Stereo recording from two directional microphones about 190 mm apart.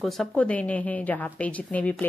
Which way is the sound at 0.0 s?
Centre (ahead or behind).